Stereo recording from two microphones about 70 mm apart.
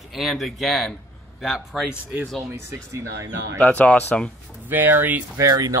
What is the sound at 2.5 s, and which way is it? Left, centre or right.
Speech, right.